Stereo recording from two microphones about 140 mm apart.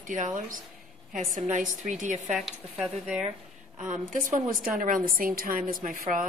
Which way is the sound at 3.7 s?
60° right (ahead or behind).